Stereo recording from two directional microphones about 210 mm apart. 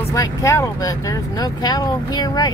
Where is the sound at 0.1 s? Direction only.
15° left (ahead or behind).